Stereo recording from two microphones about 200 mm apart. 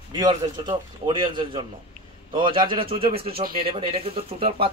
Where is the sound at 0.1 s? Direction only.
20° right (ahead or behind).